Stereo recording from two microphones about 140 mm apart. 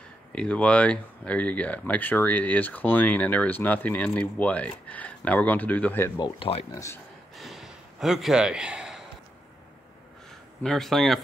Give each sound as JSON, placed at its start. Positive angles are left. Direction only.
{"t": 0.3, "sound": "speech", "side_deg": 5}
{"t": 6.1, "sound": "speech", "side_deg": 30}
{"t": 7.3, "sound": "a sound", "side_deg": 0}
{"t": 10.6, "sound": "speech", "side_deg": 0}